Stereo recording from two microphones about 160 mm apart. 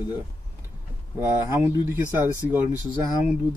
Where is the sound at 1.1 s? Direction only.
15° right (ahead or behind).